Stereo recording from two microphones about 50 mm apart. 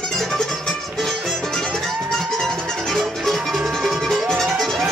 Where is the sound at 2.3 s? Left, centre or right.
Centre.